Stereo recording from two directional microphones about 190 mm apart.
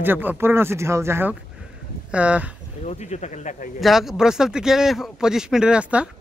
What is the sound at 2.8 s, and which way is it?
Speech, 35° left (ahead or behind).